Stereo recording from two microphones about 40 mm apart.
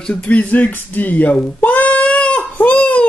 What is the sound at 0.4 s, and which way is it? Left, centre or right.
Speech, left.